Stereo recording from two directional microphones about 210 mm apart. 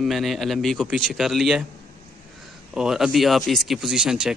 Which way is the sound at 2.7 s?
5° right (ahead or behind).